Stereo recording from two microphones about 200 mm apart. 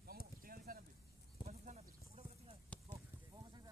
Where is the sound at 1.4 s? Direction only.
35° right (ahead or behind).